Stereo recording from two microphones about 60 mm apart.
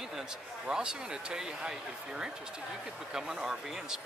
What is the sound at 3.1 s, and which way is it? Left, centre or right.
Speech, centre.